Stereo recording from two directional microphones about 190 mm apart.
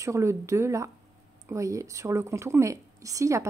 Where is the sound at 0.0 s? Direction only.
15° right (ahead or behind).